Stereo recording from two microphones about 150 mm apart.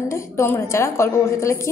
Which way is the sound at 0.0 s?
20° left (ahead or behind).